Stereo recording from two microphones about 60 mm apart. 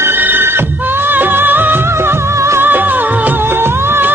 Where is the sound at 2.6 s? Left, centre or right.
Right.